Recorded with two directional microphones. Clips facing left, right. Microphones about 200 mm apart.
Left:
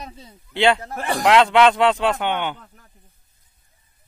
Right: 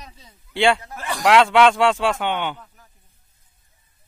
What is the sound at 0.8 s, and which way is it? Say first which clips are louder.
Speech: left 5 dB; 55° left (ahead or behind).